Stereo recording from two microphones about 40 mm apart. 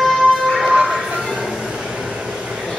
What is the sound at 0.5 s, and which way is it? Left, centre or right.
Music, centre.